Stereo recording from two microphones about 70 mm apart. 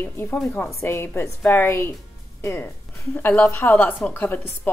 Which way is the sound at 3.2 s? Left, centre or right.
Left.